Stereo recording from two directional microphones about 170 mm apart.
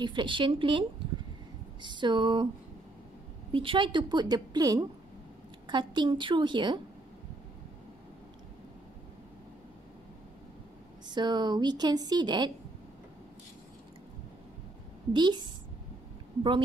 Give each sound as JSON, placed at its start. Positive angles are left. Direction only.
{"t": 0.0, "sound": "a woman's voice", "side_deg": -30}
{"t": 3.5, "sound": "a woman's voice", "side_deg": -30}
{"t": 11.1, "sound": "a woman's voice", "side_deg": -25}
{"t": 15.1, "sound": "a woman's voice", "side_deg": -25}